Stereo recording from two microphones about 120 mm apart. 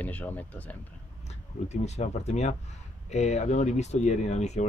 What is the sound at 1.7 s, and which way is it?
Speech, 70° left (ahead or behind).